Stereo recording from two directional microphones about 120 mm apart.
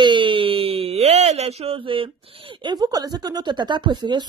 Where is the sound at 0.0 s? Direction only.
45° right (ahead or behind).